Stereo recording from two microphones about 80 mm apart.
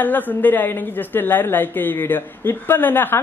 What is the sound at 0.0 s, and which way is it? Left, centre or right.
Speech, left.